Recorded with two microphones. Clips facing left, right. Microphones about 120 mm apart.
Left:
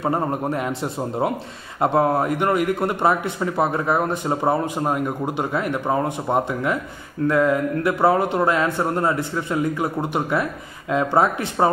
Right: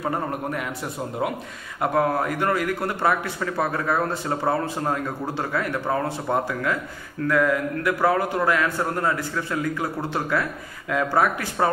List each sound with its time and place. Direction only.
0.0 s a man's voice: 25° left (ahead or behind)
1.8 s a man's voice: 25° left (ahead or behind)